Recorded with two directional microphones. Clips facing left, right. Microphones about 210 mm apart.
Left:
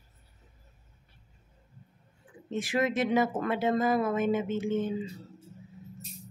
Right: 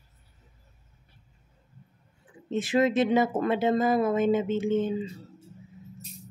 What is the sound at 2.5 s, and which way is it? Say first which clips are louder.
Speech: right 5 dB; 25° right (ahead or behind).